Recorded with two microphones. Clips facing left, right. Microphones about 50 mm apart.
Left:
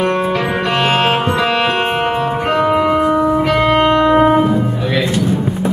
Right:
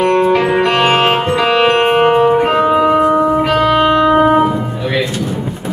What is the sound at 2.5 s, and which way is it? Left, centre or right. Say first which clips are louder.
Music: right 2 dB; right.